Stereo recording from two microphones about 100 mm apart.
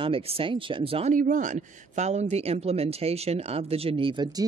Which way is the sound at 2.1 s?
90° right.